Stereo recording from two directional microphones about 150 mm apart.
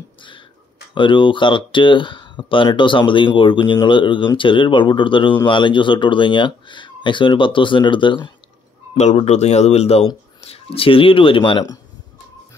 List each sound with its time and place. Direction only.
0.9 s speech: 35° left (ahead or behind)
8.9 s speech: 45° left (ahead or behind); by 11.8 s 30° left (ahead or behind)